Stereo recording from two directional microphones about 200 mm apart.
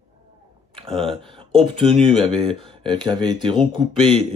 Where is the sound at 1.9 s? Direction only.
Centre (ahead or behind).